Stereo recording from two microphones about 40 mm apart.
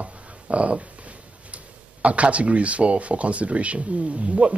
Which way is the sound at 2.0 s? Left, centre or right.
Right.